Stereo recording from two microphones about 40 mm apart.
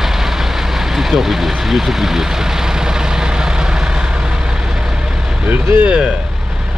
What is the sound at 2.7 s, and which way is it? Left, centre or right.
Vehicle, centre.